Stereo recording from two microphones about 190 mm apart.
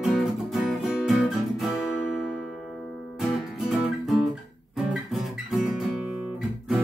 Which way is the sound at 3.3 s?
Centre (ahead or behind).